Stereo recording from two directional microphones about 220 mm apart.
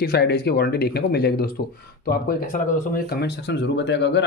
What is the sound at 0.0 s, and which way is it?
Speech, 45° left (ahead or behind).